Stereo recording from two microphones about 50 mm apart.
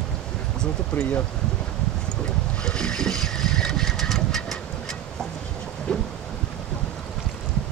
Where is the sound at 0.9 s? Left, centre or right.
Left.